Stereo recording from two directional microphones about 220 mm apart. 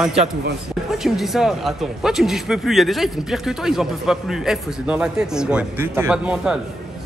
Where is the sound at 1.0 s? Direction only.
Centre (ahead or behind).